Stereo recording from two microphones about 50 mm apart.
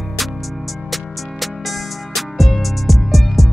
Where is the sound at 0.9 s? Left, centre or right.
Centre.